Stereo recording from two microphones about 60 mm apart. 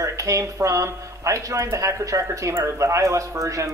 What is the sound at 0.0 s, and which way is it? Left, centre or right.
Speech, right.